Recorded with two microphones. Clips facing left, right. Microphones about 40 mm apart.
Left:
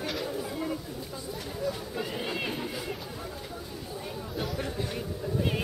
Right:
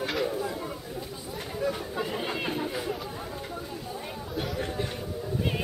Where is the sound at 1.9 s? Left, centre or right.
Centre.